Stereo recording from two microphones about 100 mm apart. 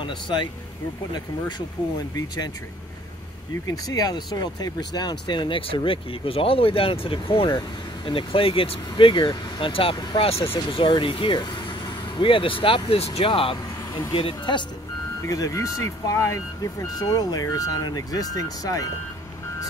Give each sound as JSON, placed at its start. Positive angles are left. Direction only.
{"t": 0.0, "sound": "speech", "side_deg": 50}
{"t": 2.1, "sound": "speech", "side_deg": 45}
{"t": 3.6, "sound": "speech", "side_deg": 40}
{"t": 15.2, "sound": "speech", "side_deg": 35}